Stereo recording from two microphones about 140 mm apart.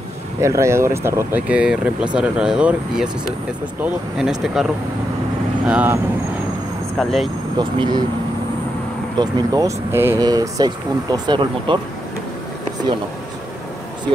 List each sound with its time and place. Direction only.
0.4 s speech: 20° right (ahead or behind); by 4.6 s 5° right (ahead or behind)
5.7 s speech: 10° right (ahead or behind)
7.0 s speech: centre (ahead or behind)
7.5 s speech: 30° right (ahead or behind)
9.2 s speech: 25° right (ahead or behind)